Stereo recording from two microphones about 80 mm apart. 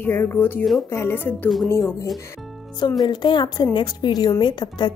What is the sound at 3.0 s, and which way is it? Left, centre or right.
A woman's voice, left.